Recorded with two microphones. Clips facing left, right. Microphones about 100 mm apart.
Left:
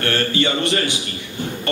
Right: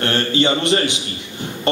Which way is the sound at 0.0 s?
25° right (ahead or behind).